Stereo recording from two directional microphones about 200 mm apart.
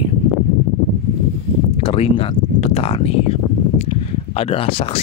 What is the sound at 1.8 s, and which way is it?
Speech, 30° left (ahead or behind).